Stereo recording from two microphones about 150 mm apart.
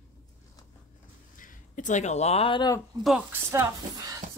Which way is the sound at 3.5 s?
20° right (ahead or behind).